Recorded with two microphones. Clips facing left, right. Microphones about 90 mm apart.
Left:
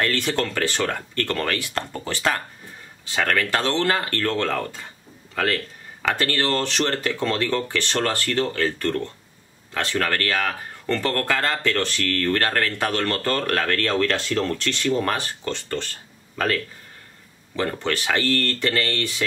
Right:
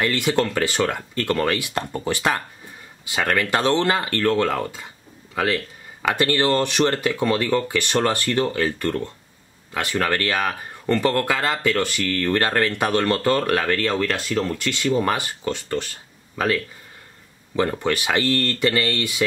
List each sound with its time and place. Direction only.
0.0 s speech: 15° right (ahead or behind)
17.6 s speech: 15° right (ahead or behind)